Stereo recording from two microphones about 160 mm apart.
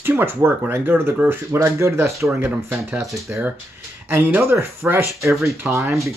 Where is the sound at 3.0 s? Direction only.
Centre (ahead or behind); by 6.0 s 15° right (ahead or behind).